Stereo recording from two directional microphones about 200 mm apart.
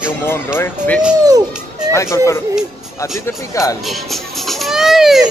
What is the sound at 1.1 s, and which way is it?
Speech, 20° right (ahead or behind).